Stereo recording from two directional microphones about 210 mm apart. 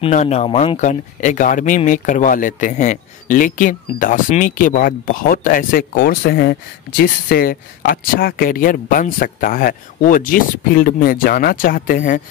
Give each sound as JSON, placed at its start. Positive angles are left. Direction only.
{"t": 0.0, "sound": "speech", "side_deg": 30}